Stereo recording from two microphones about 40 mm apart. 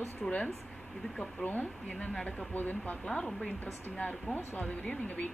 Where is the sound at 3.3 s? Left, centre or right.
Centre.